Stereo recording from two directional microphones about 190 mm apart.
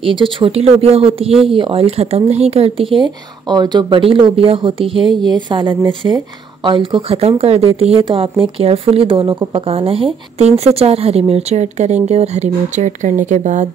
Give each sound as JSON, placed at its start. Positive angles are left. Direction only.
{"t": 0.0, "sound": "speech", "side_deg": -25}